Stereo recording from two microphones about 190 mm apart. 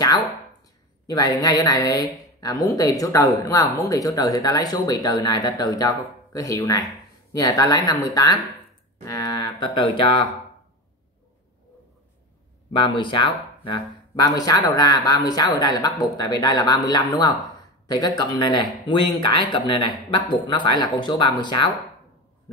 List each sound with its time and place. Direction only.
1.0 s speech: 20° left (ahead or behind)
12.7 s speech: 25° left (ahead or behind)